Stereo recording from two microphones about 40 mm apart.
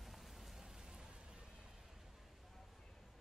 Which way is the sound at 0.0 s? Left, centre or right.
Centre.